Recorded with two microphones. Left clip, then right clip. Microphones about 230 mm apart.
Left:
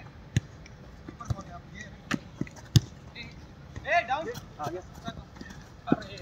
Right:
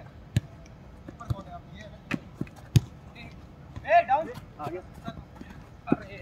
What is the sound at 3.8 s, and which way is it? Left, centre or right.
Speech, right.